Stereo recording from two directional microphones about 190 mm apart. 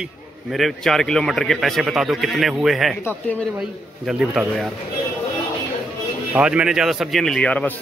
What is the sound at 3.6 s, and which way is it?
A man's voice, 5° right (ahead or behind).